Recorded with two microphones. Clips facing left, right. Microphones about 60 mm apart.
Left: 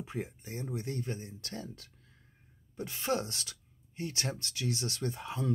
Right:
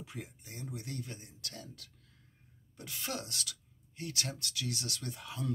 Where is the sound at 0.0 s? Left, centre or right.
Left.